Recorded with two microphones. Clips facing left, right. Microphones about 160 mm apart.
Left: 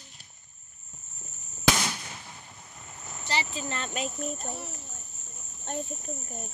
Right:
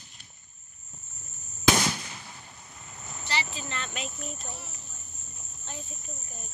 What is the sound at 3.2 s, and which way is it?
Speech, 40° left (ahead or behind).